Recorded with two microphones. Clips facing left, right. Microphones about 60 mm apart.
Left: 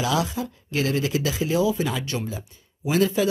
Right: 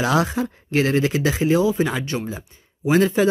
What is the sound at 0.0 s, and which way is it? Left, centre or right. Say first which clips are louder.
Speech: right 4 dB; right.